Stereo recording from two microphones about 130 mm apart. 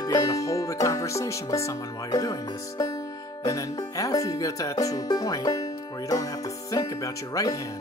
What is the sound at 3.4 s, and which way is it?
Speech, 25° left (ahead or behind).